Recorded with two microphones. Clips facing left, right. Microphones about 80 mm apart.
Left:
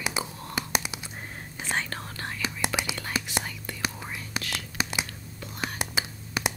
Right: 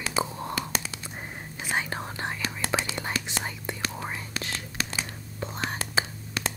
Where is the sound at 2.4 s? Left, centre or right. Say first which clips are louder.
Left 1 dB; centre.